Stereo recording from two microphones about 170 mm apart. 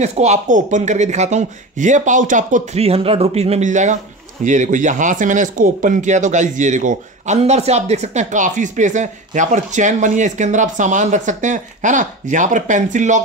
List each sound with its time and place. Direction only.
0.0 s speech: 40° right (ahead or behind)